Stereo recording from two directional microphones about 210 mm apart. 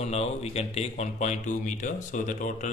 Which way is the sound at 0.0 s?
30° left (ahead or behind).